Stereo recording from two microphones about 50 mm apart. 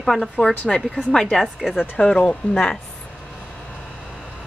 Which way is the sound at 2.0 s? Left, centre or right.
Centre.